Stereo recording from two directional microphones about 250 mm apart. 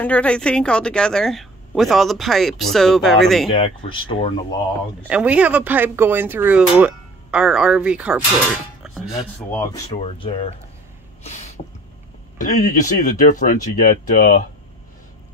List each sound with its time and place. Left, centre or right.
0.0 s a woman's voice: centre
3.4 s speech: left
5.0 s a woman's voice: centre
8.8 s music: centre
9.8 s speech: left
12.4 s speech: left